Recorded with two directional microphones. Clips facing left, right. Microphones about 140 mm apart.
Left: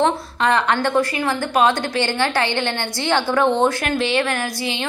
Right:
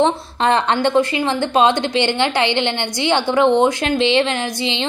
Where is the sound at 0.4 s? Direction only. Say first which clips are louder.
Right 2 dB; 30° right (ahead or behind).